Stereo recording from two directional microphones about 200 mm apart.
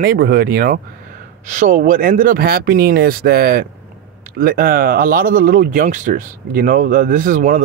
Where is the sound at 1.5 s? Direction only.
40° right (ahead or behind).